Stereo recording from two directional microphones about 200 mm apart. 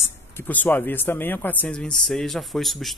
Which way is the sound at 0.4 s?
10° left (ahead or behind).